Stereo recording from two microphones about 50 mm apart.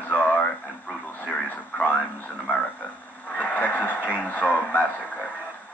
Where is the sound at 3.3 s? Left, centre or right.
Left.